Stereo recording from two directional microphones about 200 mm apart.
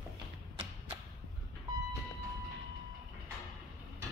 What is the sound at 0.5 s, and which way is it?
Arrow, 30° right (ahead or behind).